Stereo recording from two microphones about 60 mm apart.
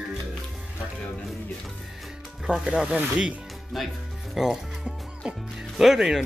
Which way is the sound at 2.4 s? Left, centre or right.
Centre.